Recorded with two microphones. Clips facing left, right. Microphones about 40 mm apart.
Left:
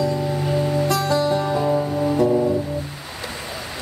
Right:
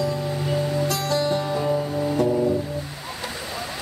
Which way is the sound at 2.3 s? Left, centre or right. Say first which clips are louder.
Left 2 dB; left.